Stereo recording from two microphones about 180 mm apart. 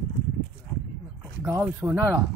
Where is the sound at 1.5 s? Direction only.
15° right (ahead or behind).